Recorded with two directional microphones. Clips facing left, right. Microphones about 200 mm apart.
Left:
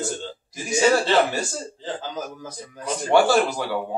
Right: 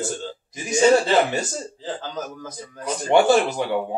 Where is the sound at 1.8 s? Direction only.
10° left (ahead or behind).